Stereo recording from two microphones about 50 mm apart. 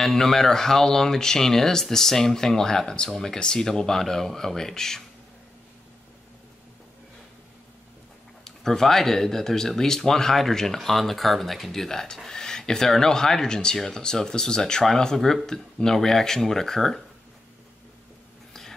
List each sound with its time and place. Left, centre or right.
0.0 s speech: centre
8.5 s speech: centre